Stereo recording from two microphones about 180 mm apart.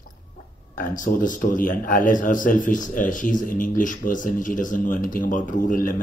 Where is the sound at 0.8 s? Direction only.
45° left (ahead or behind).